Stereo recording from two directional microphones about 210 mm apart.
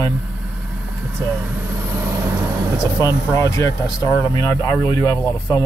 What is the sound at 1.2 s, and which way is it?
Speech, 5° right (ahead or behind).